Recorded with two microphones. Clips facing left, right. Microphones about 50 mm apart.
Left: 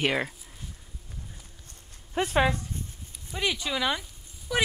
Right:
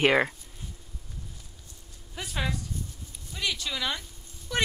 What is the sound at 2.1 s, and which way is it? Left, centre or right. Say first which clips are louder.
Speech: left 9 dB; left.